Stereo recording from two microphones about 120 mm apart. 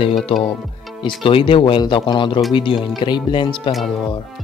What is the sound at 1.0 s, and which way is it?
Speech, 45° left (ahead or behind).